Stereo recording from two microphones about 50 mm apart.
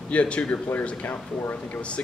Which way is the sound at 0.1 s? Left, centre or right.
Left.